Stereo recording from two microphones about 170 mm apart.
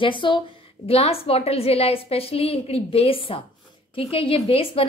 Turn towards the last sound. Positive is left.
turn(degrees=35)  # may be behind; listen again after turning